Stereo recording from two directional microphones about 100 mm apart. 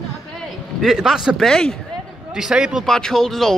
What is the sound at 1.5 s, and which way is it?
Speech, 5° left (ahead or behind).